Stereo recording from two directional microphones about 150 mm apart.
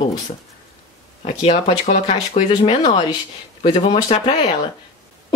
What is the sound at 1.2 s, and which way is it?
Speech, 40° left (ahead or behind).